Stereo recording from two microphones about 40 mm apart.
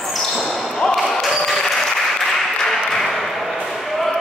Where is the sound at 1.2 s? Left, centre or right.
Centre.